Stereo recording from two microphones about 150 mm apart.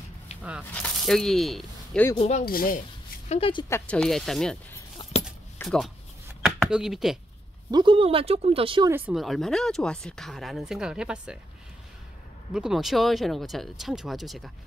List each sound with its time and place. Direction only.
0.4 s speech: 10° right (ahead or behind)
0.7 s speech: 5° left (ahead or behind)
2.1 s speech: 45° left (ahead or behind)
2.4 s speech: 75° left (ahead or behind)
3.3 s speech: 40° left (ahead or behind)
3.6 s speech: 15° left (ahead or behind)
5.6 s a sound: 10° left (ahead or behind)
6.7 s speech: centre (ahead or behind)
7.7 s speech: 35° right (ahead or behind)
8.8 s speech: 15° right (ahead or behind)
9.1 s speech: centre (ahead or behind)
12.5 s speech: 5° right (ahead or behind)